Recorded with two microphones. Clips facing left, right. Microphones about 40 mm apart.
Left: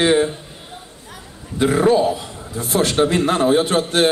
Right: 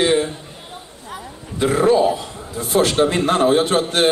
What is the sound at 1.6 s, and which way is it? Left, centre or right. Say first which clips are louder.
A man's voice: even; centre.